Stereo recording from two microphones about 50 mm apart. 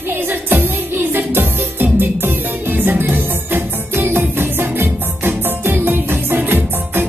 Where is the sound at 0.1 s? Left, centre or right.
Right.